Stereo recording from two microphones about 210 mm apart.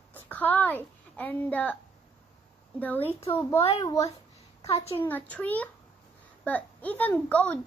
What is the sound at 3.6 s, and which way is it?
Speech, 25° left (ahead or behind).